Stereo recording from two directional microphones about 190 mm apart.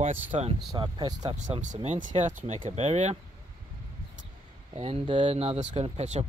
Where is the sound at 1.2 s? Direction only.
40° right (ahead or behind).